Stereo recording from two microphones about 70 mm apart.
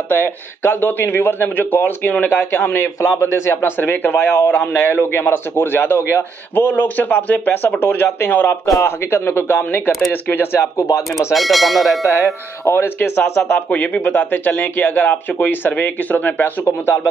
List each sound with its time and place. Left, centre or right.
0.1 s speech: left
11.3 s speech: centre
12.6 s speech: left
13.7 s speech: centre; by 17.1 s left